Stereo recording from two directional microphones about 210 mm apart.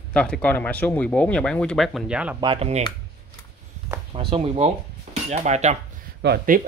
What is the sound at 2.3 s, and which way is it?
Speech, 25° right (ahead or behind).